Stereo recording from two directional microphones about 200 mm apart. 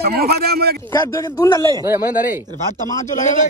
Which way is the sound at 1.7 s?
20° right (ahead or behind).